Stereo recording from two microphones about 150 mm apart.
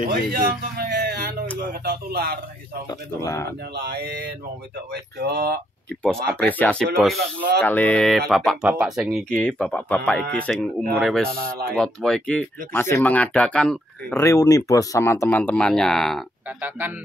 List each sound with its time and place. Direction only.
0.0 s a man's voice: 90° right
0.8 s a sound: 80° right
1.6 s a man's voice: 90° right
2.9 s speech: 20° left (ahead or behind)
3.8 s a man's voice: 90° right
6.0 s speech: 10° left (ahead or behind)
7.2 s a man's voice: 90° right
7.6 s speech: 10° left (ahead or behind)
11.2 s a man's voice: 90° right
11.7 s speech: centre (ahead or behind)
14.1 s speech: 20° left (ahead or behind); by 16.3 s centre (ahead or behind)